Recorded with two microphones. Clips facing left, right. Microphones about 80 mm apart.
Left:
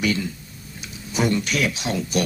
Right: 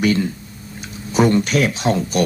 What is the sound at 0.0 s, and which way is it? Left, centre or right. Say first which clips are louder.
Speech: right 6 dB; right.